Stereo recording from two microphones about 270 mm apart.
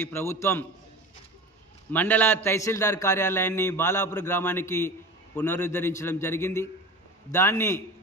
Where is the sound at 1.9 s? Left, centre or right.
Centre.